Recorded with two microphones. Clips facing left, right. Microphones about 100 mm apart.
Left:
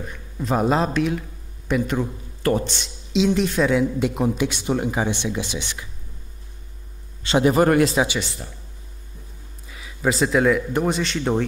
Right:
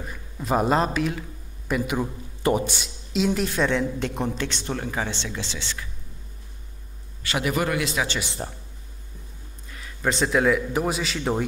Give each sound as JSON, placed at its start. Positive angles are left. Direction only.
{"t": 0.0, "sound": "a man's voice", "side_deg": -5}
{"t": 7.2, "sound": "a man's voice", "side_deg": 30}
{"t": 7.6, "sound": "speech", "side_deg": 40}
{"t": 8.4, "sound": "speech", "side_deg": -40}
{"t": 9.7, "sound": "speech", "side_deg": 5}